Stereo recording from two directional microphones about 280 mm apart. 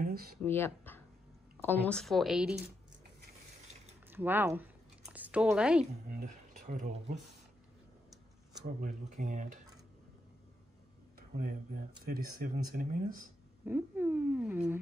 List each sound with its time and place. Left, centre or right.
0.0 s speech: right
0.5 s speech: centre
4.1 s a sound: centre
6.1 s speech: right
8.8 s speech: right
11.1 s speech: right
13.7 s speech: centre